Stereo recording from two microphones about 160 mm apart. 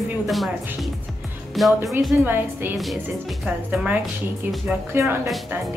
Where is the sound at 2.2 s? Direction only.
15° right (ahead or behind).